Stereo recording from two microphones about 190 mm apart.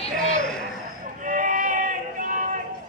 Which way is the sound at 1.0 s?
45° right (ahead or behind).